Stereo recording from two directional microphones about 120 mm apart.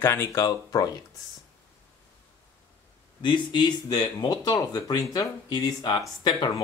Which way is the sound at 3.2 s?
40° left (ahead or behind).